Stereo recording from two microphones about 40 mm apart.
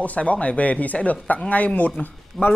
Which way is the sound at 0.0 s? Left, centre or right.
Left.